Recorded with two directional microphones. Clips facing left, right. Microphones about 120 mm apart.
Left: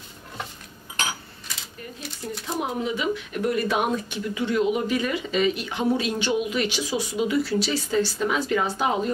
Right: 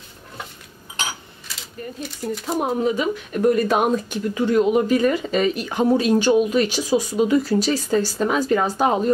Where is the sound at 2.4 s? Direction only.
40° right (ahead or behind).